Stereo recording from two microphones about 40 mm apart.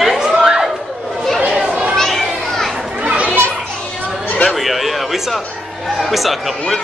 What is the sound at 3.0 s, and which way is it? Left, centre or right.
Children playing, right.